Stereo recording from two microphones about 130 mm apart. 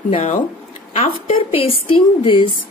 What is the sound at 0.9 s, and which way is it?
A woman's voice, 50° left (ahead or behind).